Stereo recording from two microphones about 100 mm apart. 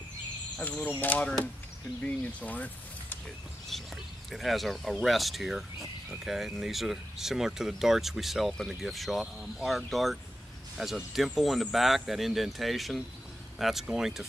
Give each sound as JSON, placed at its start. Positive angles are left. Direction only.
{"t": 0.6, "sound": "speech", "side_deg": 15}
{"t": 3.7, "sound": "speech", "side_deg": 0}